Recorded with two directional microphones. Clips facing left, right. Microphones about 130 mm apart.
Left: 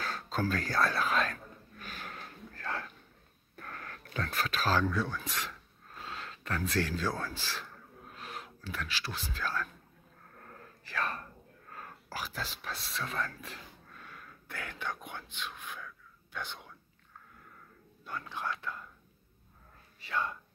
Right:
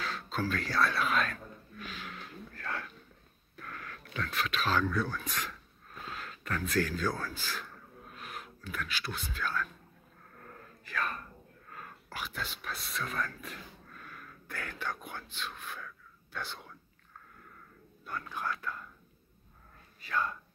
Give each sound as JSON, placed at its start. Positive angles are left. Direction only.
{"t": 0.0, "sound": "a sound", "side_deg": 40}
{"t": 0.5, "sound": "speech", "side_deg": 40}
{"t": 1.9, "sound": "a sound", "side_deg": 45}
{"t": 4.8, "sound": "speech", "side_deg": 20}
{"t": 10.9, "sound": "speech", "side_deg": 30}
{"t": 18.0, "sound": "speech", "side_deg": 20}
{"t": 20.0, "sound": "speech", "side_deg": 25}